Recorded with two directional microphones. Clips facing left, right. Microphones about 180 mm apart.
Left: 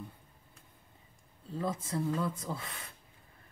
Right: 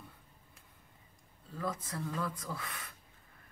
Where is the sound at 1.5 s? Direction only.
25° left (ahead or behind).